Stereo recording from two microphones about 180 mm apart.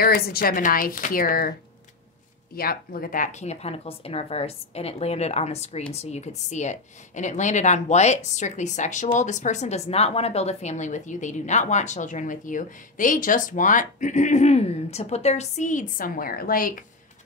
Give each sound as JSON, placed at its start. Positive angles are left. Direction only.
{"t": 0.0, "sound": "speech", "side_deg": 55}
{"t": 2.5, "sound": "speech", "side_deg": 55}